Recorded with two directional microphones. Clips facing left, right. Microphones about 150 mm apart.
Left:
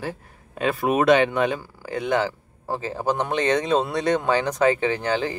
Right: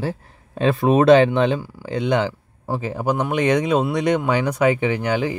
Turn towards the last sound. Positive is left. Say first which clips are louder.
# right 2 dB
turn(degrees=-15)  # may be behind; listen again after turning